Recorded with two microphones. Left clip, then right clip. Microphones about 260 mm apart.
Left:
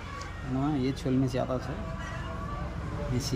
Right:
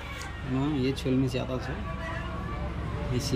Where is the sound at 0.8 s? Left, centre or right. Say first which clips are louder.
Right 2 dB; centre.